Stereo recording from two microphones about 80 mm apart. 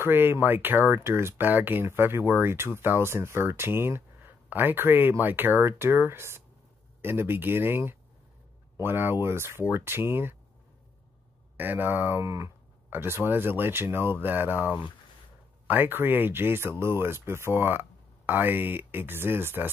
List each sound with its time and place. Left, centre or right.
0.0 s speech: right
11.5 s speech: right
12.9 s speech: right